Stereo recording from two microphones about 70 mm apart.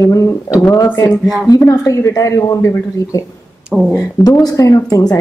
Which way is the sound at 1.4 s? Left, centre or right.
Left.